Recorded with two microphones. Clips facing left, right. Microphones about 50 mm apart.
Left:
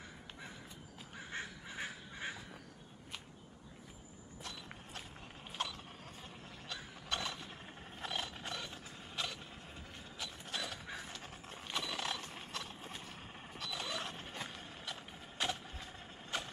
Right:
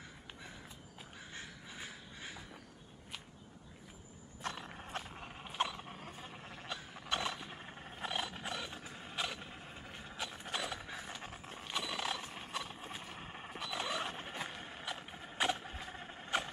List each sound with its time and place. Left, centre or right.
1.3 s duck: left
4.4 s a sound: right
5.6 s mechanisms: right
7.1 s a sound: centre
9.9 s mechanisms: centre
10.9 s horse: centre